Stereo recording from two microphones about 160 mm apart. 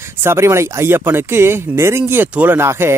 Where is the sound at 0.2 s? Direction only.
15° right (ahead or behind).